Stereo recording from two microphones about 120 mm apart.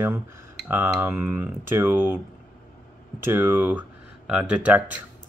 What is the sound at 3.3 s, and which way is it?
Speech, 20° right (ahead or behind).